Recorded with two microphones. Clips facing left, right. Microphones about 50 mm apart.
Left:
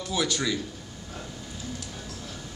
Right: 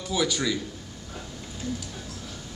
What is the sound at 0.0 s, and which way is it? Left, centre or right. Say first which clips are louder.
Speech: right 1 dB; centre.